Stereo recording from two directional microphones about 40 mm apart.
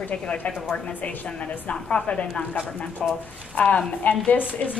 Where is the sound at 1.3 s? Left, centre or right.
Left.